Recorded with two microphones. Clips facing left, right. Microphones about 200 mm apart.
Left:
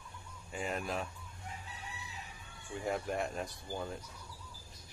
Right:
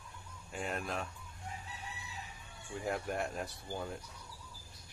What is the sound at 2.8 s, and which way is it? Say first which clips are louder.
Speech: left 1 dB; centre (ahead or behind).